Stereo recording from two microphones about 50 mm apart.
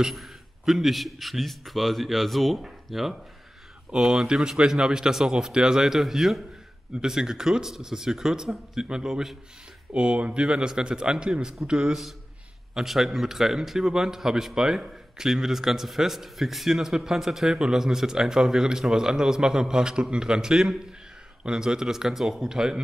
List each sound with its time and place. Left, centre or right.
0.0 s a man's voice: centre
9.9 s a man's voice: right
12.7 s a man's voice: centre